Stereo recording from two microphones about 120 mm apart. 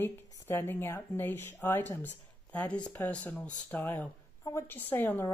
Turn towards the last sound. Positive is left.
turn(degrees=15)  # may be behind; listen again after turning